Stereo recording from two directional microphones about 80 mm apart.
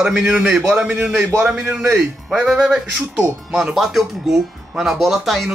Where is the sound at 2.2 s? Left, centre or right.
Centre.